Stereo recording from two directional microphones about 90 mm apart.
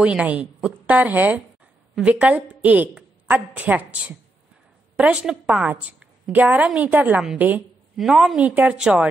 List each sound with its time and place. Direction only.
0.0 s a woman's voice: 15° right (ahead or behind)
7.9 s a woman's voice: 5° right (ahead or behind)
8.4 s a woman's voice: 15° right (ahead or behind)